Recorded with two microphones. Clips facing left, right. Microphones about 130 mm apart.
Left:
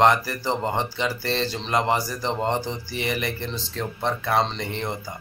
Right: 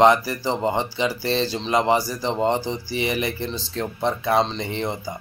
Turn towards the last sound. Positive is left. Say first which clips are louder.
# right 2 dB
turn(degrees=-15)  # may be behind; listen again after turning